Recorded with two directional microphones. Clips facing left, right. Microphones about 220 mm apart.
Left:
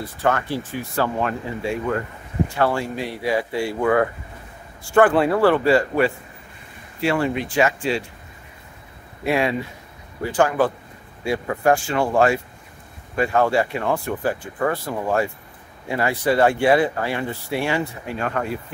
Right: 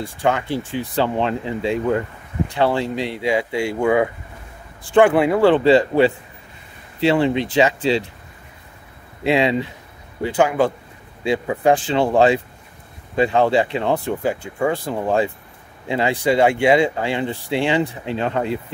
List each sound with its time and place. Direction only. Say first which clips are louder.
0.2 s speech: right 2 dB; 15° right (ahead or behind)
9.2 s speech: right 3 dB; 20° right (ahead or behind)